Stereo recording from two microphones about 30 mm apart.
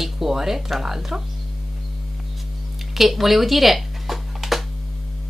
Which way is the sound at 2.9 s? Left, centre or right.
Centre.